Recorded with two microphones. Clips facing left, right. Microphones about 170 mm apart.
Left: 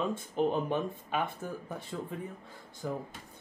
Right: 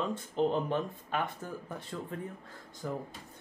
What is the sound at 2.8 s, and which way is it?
Speech, 10° left (ahead or behind).